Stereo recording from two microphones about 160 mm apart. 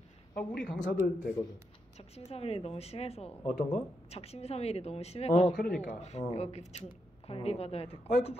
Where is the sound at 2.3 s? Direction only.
40° left (ahead or behind).